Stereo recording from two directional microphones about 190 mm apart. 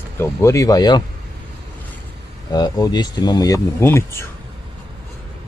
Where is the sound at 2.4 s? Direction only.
20° left (ahead or behind).